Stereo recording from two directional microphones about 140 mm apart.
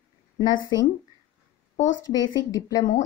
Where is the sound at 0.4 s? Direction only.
30° left (ahead or behind).